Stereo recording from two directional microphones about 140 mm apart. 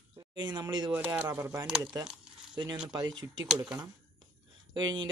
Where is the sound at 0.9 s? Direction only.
10° right (ahead or behind).